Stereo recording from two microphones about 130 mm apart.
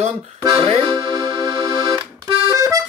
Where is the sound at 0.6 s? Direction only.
45° right (ahead or behind).